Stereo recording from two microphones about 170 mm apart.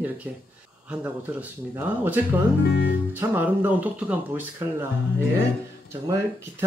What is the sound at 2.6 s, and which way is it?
Speech, 70° left (ahead or behind).